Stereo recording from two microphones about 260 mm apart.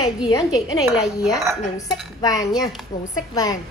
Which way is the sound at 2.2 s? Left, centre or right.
Centre.